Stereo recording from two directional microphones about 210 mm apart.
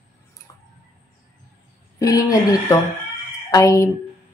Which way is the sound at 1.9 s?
15° left (ahead or behind).